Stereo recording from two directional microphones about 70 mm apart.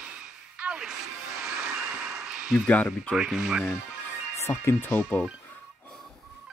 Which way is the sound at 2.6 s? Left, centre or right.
Left.